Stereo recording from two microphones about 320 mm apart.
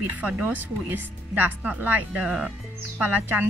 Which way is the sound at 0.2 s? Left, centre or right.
Centre.